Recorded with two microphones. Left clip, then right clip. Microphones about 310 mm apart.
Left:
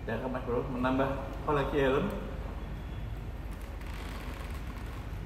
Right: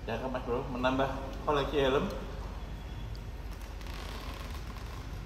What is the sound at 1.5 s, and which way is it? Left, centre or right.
Speech, centre.